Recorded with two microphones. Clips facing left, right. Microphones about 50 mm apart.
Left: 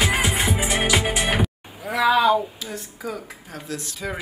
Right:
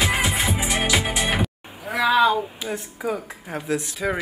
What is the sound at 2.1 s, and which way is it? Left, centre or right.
Speech, right.